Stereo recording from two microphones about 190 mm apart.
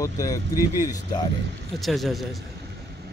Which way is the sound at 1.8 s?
Centre (ahead or behind).